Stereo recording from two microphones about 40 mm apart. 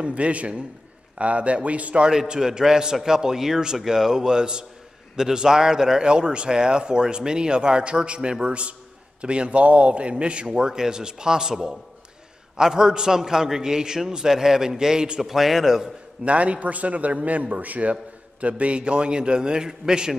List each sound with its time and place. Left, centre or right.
0.0 s a man's voice: right
2.0 s a man's voice: right
15.2 s a man's voice: centre
16.3 s a man's voice: right; by 20.2 s centre